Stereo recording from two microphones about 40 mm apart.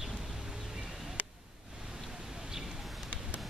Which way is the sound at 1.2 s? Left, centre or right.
Right.